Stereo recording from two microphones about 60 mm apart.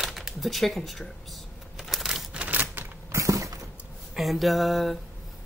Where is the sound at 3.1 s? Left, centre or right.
Right.